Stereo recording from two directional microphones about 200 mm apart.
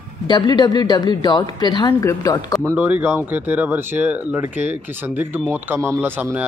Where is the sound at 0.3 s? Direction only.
20° left (ahead or behind).